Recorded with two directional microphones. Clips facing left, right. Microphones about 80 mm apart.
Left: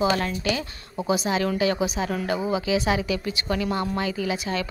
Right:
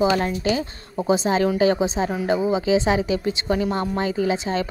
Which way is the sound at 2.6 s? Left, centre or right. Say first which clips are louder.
Right 4 dB; right.